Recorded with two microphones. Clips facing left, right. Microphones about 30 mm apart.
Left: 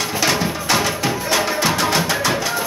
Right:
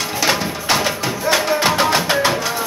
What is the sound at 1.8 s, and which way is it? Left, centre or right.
Music, centre.